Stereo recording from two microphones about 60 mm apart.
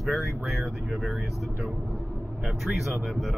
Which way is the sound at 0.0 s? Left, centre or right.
Centre.